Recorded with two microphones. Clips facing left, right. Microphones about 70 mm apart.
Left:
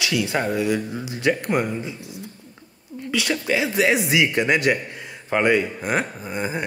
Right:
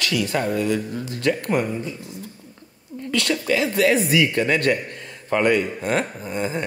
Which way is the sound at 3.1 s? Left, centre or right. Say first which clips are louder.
Right 1 dB; centre.